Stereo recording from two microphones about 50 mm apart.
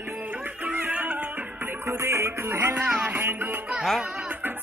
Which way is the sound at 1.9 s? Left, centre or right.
Right.